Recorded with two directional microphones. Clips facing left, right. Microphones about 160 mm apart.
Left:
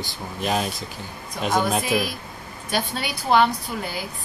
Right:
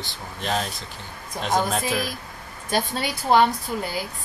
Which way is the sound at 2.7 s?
45° right (ahead or behind).